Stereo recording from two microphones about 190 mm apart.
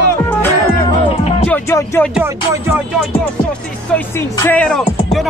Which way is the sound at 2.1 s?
15° right (ahead or behind).